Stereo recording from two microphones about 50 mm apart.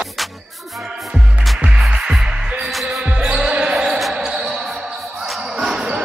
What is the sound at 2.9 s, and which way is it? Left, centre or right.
Basketball bounce, centre.